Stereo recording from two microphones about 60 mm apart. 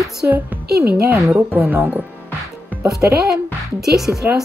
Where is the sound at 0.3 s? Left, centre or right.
Right.